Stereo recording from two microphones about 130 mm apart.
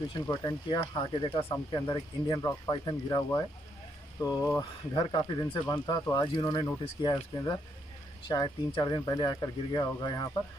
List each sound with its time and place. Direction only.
0.1 s speech: 30° left (ahead or behind)
4.9 s speech: 35° left (ahead or behind)
8.3 s speech: 30° left (ahead or behind)